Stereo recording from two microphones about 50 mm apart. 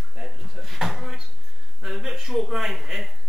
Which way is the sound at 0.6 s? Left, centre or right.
Centre.